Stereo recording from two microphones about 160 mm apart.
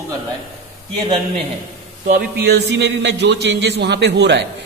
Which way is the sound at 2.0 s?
80° right.